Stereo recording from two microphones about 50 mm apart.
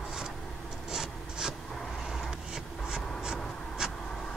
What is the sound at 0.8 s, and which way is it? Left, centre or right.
Rub, centre.